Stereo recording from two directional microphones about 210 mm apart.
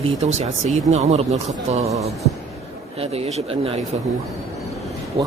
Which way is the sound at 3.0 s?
30° right (ahead or behind).